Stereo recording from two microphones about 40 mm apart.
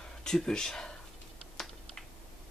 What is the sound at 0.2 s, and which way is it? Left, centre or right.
Speech, centre.